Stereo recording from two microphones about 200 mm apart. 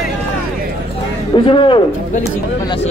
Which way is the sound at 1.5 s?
25° left (ahead or behind).